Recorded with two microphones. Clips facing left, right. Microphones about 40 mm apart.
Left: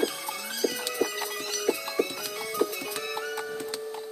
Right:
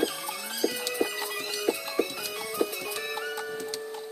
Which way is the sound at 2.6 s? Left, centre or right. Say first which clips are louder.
Left 1 dB; centre.